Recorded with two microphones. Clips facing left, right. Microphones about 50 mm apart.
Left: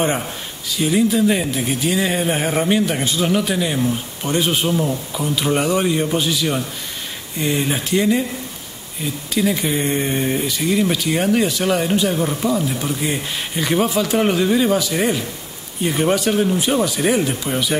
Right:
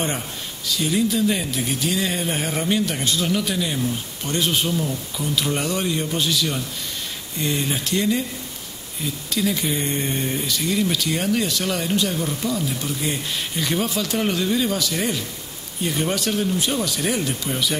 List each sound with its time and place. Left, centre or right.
0.7 s speech: centre